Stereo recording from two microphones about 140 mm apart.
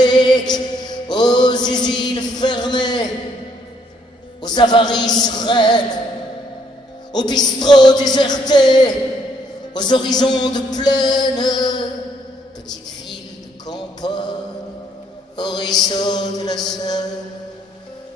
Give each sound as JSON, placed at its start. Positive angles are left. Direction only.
{"t": 0.0, "sound": "mantra", "side_deg": 30}
{"t": 4.4, "sound": "music", "side_deg": 30}
{"t": 7.1, "sound": "music", "side_deg": 30}
{"t": 13.7, "sound": "music", "side_deg": 30}
{"t": 15.3, "sound": "mantra", "side_deg": 30}
{"t": 15.9, "sound": "a sound", "side_deg": 30}